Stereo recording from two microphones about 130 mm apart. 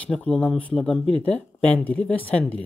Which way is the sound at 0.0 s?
10° left (ahead or behind).